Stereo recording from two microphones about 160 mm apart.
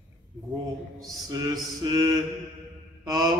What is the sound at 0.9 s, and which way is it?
Mantra, 20° right (ahead or behind).